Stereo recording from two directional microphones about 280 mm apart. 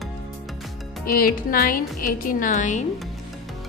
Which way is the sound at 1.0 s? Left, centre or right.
Left.